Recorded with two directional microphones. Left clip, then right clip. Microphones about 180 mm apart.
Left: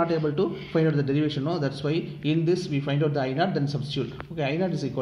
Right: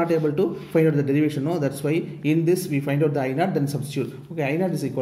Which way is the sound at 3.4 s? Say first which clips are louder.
Right 2 dB; 50° right (ahead or behind).